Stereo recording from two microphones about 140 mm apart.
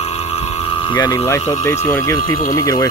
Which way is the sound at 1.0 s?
25° left (ahead or behind).